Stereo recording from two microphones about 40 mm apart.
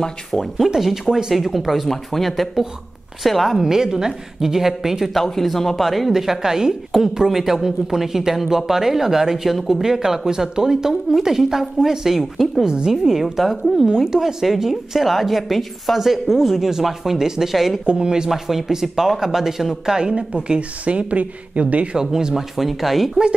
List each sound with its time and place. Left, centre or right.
0.3 s a woman's voice: centre
5.1 s a woman's voice: centre
12.6 s a woman's voice: centre
17.8 s a woman's voice: right
18.3 s a woman's voice: centre
19.7 s a woman's voice: right
21.9 s a woman's voice: centre